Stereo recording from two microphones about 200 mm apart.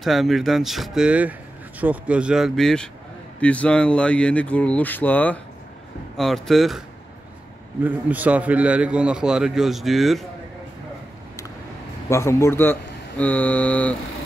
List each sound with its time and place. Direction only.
0.0 s a man's voice: centre (ahead or behind)
7.8 s a man's voice: 10° right (ahead or behind)
12.1 s speech: 15° left (ahead or behind)